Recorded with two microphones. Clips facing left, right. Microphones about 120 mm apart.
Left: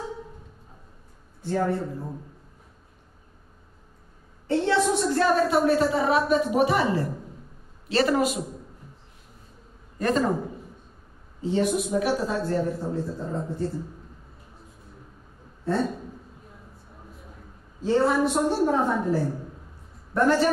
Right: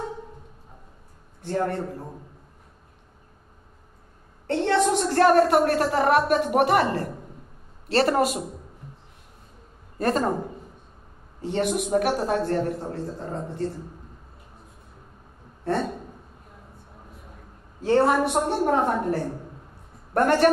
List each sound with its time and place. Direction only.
1.4 s speech: 60° right (ahead or behind)
4.5 s a sound: 60° right (ahead or behind)
4.9 s speech: 60° right (ahead or behind)
9.9 s a man's voice: 45° right (ahead or behind)
11.4 s speech: 60° right (ahead or behind)
17.7 s speech: 60° right (ahead or behind)